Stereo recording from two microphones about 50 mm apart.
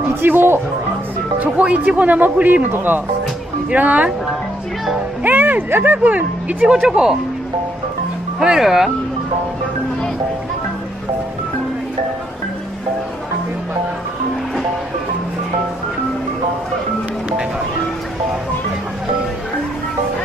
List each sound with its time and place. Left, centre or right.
0.3 s speech: right
1.4 s speech: right
3.7 s speech: right
5.2 s music: right
5.7 s speech: right
6.0 s speech: right
6.7 s speech: centre
8.4 s speech: centre